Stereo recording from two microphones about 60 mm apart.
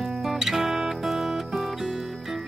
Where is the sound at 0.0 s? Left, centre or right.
Centre.